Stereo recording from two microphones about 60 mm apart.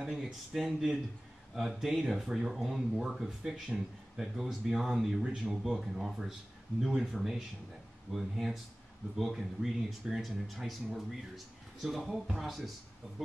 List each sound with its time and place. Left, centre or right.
0.0 s speech: centre